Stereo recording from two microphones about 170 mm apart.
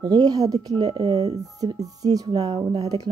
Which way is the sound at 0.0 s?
20° right (ahead or behind).